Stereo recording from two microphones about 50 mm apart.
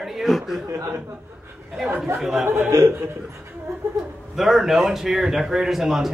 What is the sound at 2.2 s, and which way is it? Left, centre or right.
Speech, centre.